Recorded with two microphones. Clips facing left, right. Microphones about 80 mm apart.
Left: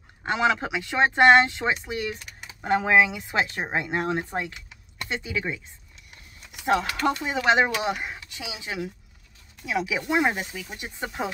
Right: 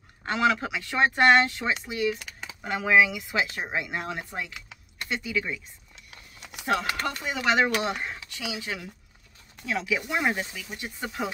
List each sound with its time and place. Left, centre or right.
0.2 s speech: left
6.6 s speech: left
7.8 s speech: centre